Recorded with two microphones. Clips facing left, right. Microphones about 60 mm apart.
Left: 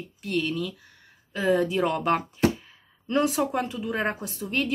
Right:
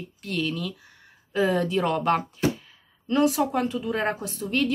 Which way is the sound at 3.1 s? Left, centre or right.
Left.